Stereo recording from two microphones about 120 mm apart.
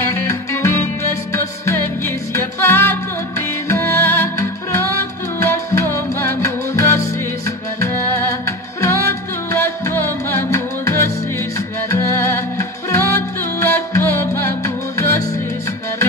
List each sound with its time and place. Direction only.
0.0 s music: 20° left (ahead or behind)